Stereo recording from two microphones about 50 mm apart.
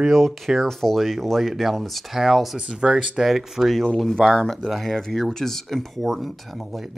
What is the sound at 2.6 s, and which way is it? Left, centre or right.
Speech, right.